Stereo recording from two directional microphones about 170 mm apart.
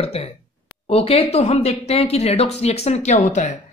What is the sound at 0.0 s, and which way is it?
Speech, 35° left (ahead or behind).